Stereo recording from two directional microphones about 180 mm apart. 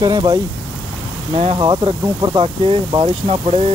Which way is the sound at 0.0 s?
25° right (ahead or behind).